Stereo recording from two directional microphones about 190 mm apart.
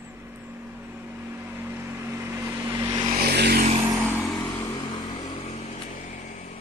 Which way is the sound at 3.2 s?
60° right (ahead or behind).